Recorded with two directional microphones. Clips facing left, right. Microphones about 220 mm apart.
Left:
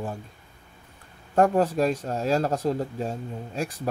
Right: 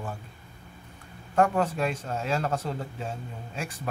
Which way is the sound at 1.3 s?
35° left (ahead or behind).